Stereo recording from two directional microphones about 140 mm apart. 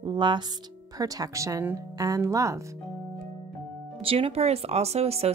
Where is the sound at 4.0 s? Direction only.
40° right (ahead or behind).